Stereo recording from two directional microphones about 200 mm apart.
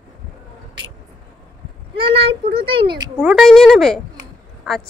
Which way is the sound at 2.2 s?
25° right (ahead or behind).